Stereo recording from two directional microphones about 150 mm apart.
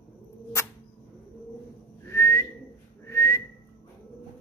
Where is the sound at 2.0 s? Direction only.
15° left (ahead or behind).